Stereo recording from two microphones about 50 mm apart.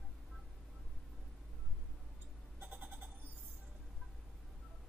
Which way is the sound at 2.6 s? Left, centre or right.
Right.